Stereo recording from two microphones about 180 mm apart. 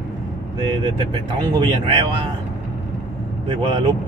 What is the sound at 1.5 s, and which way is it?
Speech, 25° right (ahead or behind).